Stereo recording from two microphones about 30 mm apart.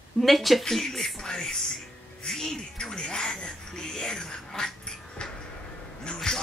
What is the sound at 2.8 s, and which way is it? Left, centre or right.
Speech, left.